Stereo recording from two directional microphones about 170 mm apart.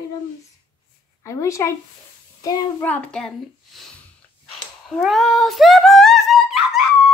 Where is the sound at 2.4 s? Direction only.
20° left (ahead or behind).